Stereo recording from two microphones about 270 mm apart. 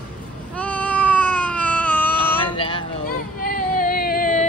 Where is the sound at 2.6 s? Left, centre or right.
Centre.